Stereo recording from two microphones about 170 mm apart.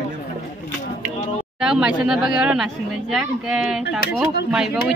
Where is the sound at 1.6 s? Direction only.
5° right (ahead or behind).